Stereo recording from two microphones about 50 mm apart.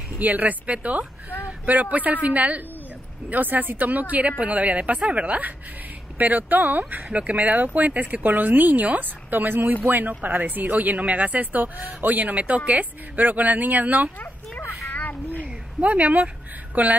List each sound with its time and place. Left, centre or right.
0.2 s a woman's voice: right
14.9 s a sound: left
15.4 s a woman's voice: right